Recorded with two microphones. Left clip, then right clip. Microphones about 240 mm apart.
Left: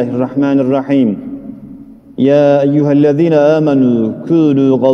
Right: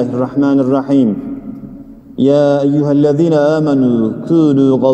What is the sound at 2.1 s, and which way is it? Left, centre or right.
A man's voice, left.